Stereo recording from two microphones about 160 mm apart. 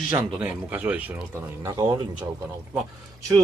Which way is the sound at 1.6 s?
25° right (ahead or behind).